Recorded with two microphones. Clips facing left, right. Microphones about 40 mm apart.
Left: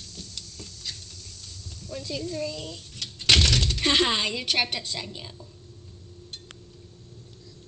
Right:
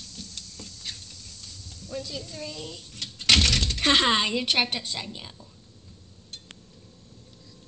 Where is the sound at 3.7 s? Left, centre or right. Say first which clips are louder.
Right 4 dB; right; by 5.3 s centre.